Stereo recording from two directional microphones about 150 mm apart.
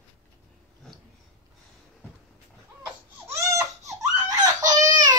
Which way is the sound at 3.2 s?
20° right (ahead or behind).